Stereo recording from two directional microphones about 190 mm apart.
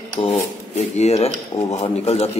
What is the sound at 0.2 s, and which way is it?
Speech, 35° left (ahead or behind).